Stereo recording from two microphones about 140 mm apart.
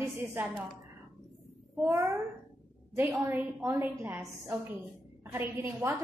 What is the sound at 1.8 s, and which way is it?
Speech, 20° right (ahead or behind).